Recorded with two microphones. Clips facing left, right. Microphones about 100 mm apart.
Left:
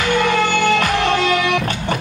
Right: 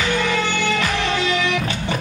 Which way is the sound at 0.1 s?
50° left (ahead or behind).